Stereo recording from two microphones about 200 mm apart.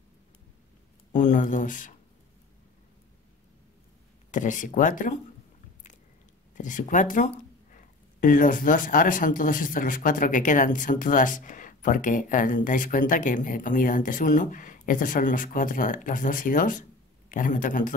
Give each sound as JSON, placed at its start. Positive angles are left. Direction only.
{"t": 1.1, "sound": "speech", "side_deg": 40}
{"t": 4.3, "sound": "speech", "side_deg": 40}
{"t": 6.5, "sound": "speech", "side_deg": 40}